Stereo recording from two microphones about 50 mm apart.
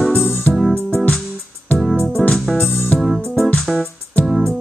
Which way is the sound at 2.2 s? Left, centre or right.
Left.